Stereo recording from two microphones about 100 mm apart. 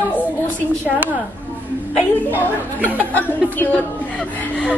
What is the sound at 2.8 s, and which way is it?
Speech, 15° left (ahead or behind).